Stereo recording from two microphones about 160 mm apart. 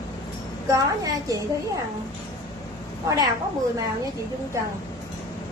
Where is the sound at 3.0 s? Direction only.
25° right (ahead or behind).